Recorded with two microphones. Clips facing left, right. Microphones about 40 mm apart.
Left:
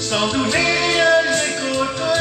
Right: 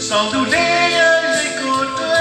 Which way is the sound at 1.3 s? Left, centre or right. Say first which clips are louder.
Right 3 dB; right.